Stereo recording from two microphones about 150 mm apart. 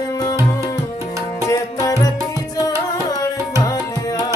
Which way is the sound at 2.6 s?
25° left (ahead or behind).